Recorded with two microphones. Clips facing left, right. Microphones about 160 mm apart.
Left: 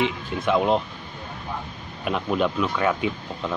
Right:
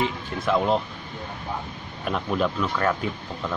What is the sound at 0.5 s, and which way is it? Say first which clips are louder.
Speech: left 1 dB; 5° left (ahead or behind).